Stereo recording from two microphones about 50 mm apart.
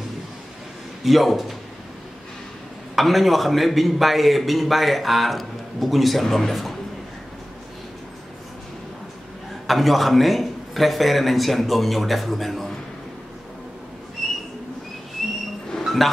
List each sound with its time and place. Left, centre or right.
1.0 s a man's voice: centre
3.0 s a man's voice: centre
9.7 s a man's voice: centre
14.2 s a sound: centre
15.8 s music: centre